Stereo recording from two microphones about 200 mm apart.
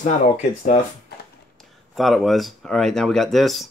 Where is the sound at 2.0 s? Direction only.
Centre (ahead or behind).